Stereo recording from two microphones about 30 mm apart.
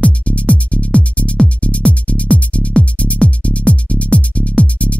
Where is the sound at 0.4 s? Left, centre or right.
Left.